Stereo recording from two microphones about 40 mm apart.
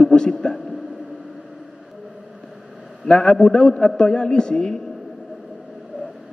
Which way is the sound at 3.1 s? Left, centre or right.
Centre.